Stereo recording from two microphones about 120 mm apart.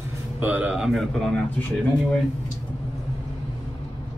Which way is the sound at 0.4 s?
10° right (ahead or behind).